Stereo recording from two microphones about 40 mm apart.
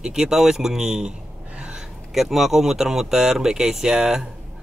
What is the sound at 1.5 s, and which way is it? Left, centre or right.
Gasp, right.